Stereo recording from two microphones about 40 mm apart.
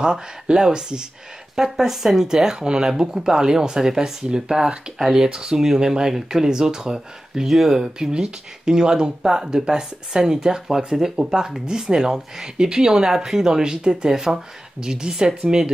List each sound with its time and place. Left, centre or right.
0.0 s speech: centre